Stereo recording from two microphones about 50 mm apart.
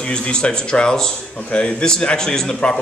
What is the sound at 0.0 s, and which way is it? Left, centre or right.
Speech, centre.